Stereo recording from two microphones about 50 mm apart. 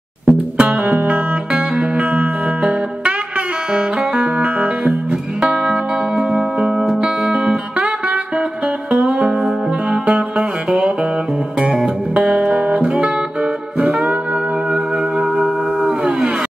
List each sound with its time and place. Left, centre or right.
0.2 s music: right
10.0 s music: right